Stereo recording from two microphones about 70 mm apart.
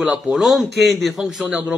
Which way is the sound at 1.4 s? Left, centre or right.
Centre.